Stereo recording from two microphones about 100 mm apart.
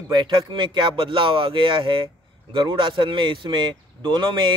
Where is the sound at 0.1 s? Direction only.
50° right (ahead or behind).